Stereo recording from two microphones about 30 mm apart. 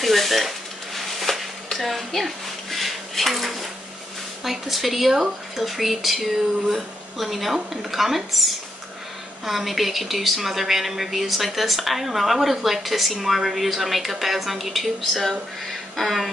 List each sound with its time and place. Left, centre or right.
0.0 s dishes: centre
1.8 s speech: centre